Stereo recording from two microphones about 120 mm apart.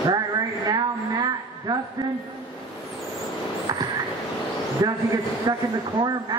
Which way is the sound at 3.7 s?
35° right (ahead or behind).